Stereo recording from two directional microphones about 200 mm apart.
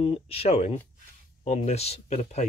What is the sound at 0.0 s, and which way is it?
Speech, 30° left (ahead or behind).